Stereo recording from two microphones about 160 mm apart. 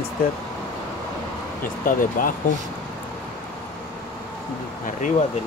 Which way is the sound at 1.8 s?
60° left (ahead or behind).